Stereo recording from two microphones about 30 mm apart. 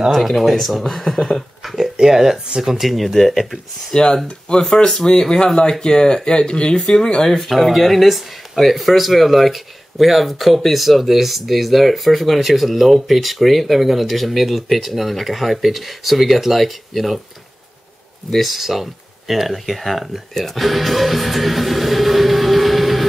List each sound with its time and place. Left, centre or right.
0.4 s speech: centre
0.9 s speech: centre
2.0 s speech: centre
3.9 s speech: left
4.8 s speech: centre
7.4 s speech: centre
18.3 s speech: centre
20.5 s music: centre